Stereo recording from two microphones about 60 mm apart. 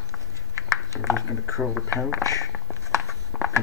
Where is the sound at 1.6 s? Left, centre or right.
Centre.